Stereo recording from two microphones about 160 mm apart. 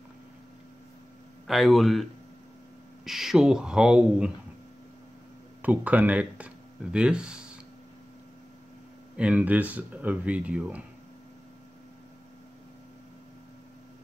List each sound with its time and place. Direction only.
1.5 s speech: centre (ahead or behind)
5.6 s speech: 10° right (ahead or behind)
9.1 s speech: 5° right (ahead or behind)